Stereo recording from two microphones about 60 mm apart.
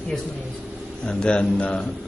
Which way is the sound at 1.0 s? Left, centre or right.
Centre.